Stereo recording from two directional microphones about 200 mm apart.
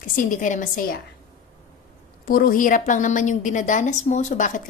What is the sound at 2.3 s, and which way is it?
A woman's voice, 45° left (ahead or behind).